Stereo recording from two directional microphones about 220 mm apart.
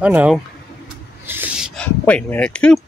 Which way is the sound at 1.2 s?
10° right (ahead or behind).